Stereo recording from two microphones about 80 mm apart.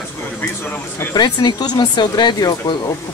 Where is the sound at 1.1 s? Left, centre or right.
Left.